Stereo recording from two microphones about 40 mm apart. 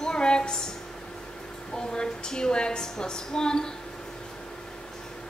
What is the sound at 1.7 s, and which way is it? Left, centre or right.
A woman's voice, centre.